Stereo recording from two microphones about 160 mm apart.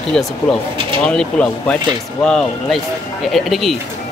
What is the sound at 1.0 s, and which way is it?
Speech, 5° left (ahead or behind).